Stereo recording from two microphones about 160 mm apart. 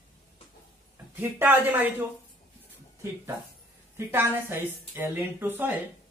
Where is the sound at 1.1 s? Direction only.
15° right (ahead or behind).